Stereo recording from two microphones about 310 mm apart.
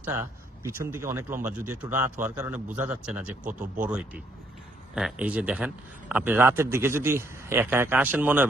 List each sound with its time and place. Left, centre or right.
0.0 s a man's voice: centre
3.4 s speech: right
4.9 s a man's voice: centre